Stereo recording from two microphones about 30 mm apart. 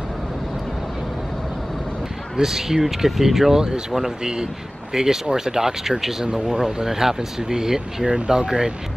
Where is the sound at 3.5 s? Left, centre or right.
Right.